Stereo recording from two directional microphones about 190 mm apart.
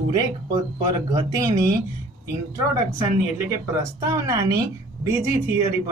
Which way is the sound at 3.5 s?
15° right (ahead or behind).